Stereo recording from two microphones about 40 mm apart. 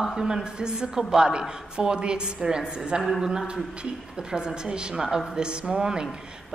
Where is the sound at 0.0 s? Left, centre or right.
Centre.